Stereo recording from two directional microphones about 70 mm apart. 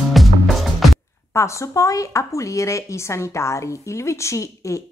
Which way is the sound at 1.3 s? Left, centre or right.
Left.